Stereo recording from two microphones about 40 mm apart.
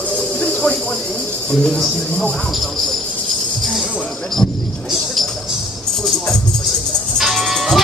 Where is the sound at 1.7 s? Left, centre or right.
Centre.